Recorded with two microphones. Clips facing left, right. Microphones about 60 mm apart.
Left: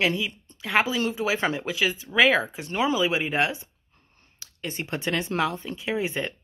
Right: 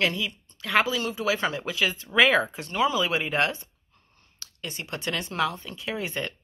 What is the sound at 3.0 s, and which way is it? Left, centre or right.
Speech, centre.